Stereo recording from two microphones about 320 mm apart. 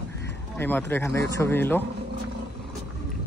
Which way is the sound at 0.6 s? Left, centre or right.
Centre.